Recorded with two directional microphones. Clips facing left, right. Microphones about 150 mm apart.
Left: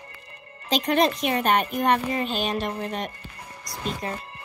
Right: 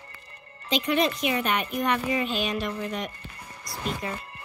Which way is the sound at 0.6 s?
40° left (ahead or behind).